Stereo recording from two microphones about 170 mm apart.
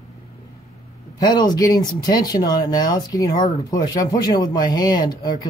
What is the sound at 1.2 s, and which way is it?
Speech, 25° left (ahead or behind).